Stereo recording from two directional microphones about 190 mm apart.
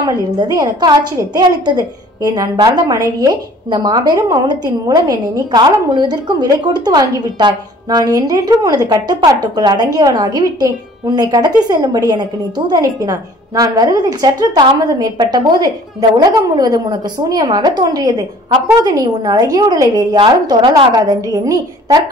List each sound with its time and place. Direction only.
0.0 s a woman's voice: 20° right (ahead or behind)